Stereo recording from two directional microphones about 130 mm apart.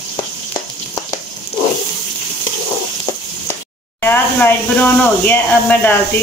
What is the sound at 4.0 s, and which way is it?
Speech, 15° left (ahead or behind).